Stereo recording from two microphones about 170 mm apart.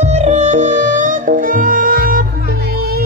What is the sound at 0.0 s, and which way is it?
Music, 40° right (ahead or behind).